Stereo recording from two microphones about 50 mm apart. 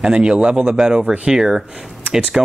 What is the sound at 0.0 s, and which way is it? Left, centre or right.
Speech, centre.